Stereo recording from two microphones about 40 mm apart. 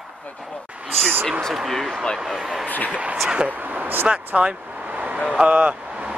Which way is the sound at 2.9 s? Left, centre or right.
Right.